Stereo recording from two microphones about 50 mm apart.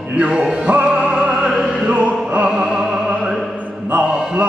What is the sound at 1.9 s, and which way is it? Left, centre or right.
Music, right.